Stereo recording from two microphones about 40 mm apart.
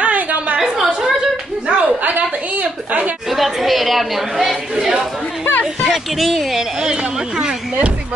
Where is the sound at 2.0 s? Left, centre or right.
Right.